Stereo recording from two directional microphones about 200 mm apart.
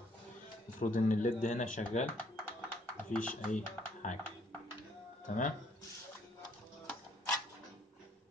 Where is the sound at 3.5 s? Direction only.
40° left (ahead or behind).